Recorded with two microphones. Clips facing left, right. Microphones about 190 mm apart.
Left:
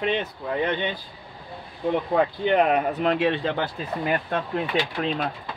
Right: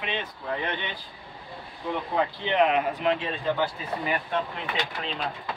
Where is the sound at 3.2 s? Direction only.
80° left.